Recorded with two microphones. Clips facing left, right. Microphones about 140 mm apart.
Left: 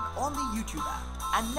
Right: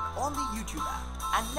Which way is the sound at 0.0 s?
Centre (ahead or behind).